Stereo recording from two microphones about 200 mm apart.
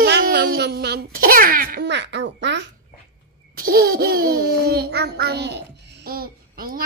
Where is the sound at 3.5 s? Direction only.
50° right (ahead or behind).